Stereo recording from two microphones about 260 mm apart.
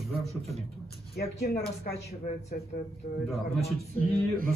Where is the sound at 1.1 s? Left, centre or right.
Left.